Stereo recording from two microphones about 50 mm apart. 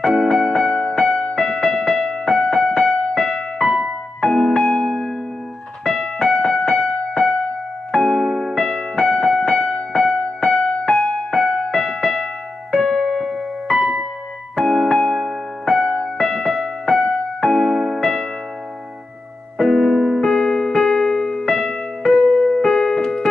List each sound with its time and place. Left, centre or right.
0.0 s music: centre
1.3 s keyboard: centre
4.2 s music: centre
5.9 s keyboard: centre
7.9 s music: centre
13.2 s keyboard: centre
14.5 s keyboard: centre
17.0 s music: centre
19.6 s electric piano: centre
22.4 s keyboard: centre